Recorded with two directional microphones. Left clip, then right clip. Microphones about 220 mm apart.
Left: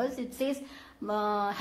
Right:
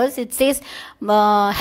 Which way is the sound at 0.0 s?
40° right (ahead or behind).